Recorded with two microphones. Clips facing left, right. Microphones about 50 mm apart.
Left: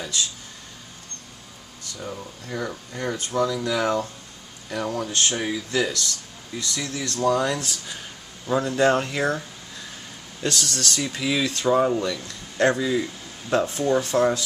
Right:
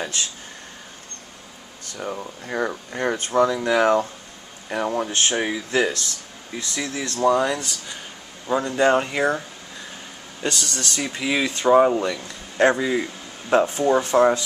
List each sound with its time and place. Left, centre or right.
0.0 s speech: right
1.9 s speech: right
7.4 s speech: centre
10.6 s speech: centre
11.0 s speech: centre